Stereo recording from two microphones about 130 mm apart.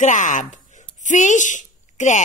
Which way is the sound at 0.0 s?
70° left (ahead or behind).